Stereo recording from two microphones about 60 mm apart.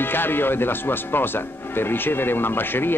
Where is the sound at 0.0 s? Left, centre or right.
Left.